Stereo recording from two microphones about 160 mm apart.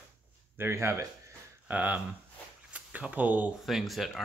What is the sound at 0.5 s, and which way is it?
Speech, 15° right (ahead or behind).